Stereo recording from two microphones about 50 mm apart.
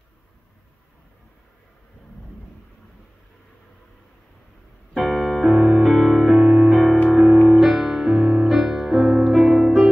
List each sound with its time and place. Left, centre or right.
4.9 s music: centre
6.3 s music: centre
6.7 s music: centre
7.1 s music: centre
7.5 s music: centre
8.2 s music: centre
8.5 s music: centre